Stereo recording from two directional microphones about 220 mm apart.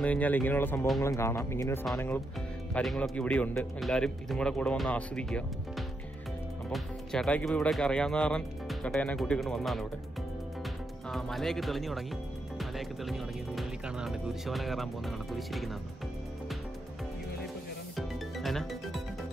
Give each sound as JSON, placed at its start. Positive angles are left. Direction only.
{"t": 0.0, "sound": "speech", "side_deg": 5}
{"t": 11.1, "sound": "speech", "side_deg": 0}
{"t": 17.9, "sound": "music", "side_deg": 0}